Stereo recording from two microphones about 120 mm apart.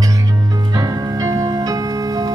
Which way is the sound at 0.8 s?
30° right (ahead or behind).